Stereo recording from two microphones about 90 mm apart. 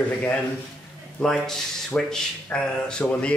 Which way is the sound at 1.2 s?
5° left (ahead or behind).